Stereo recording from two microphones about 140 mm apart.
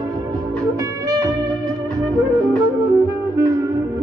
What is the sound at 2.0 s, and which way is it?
Music, 25° right (ahead or behind).